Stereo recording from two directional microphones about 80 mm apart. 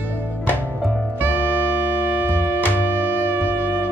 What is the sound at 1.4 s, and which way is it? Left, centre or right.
Music, left.